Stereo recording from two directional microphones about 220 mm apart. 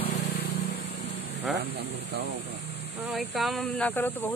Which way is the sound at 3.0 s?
Centre (ahead or behind).